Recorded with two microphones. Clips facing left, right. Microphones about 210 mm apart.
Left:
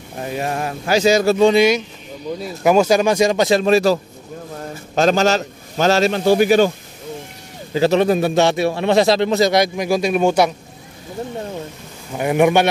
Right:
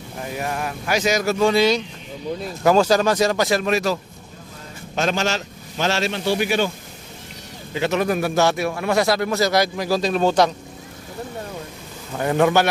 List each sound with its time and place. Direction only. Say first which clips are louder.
0.3 s a man's voice: left 4 dB; 25° left (ahead or behind)
1.5 s a man's voice: left 3 dB; 15° left (ahead or behind); by 6.7 s 40° left (ahead or behind)
7.7 s a man's voice: left 6 dB; 35° left (ahead or behind); by 10.5 s 10° left (ahead or behind)
12.1 s speech: left 3 dB; 15° left (ahead or behind)